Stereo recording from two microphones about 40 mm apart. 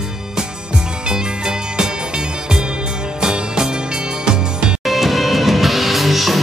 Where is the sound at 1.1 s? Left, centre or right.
Right.